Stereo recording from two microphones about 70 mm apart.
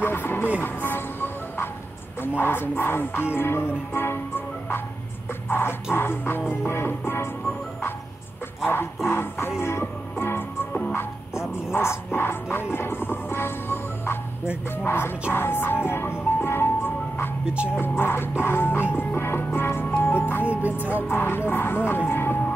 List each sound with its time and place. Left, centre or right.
0.0 s music: left
2.2 s speech: left
5.5 s music: left
5.9 s speech: left
8.6 s speech: left
9.6 s music: left
10.7 s music: centre
11.7 s speech: left
12.7 s music: left
14.9 s speech: left
18.9 s music: left
20.4 s music: right
21.1 s speech: left